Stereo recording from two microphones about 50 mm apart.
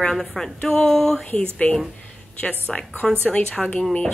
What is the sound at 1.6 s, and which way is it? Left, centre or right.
A woman's voice, left.